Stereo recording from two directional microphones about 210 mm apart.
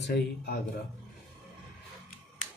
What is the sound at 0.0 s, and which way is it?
Speech, 50° left (ahead or behind).